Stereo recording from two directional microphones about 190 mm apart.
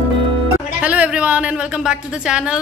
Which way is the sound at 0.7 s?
5° right (ahead or behind).